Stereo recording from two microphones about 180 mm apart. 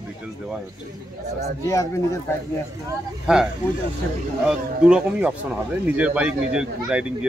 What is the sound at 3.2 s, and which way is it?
Speech, 5° right (ahead or behind).